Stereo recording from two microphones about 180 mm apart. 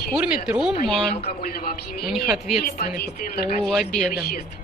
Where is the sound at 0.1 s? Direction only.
5° right (ahead or behind).